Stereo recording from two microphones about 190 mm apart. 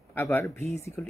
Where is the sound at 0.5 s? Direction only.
35° right (ahead or behind).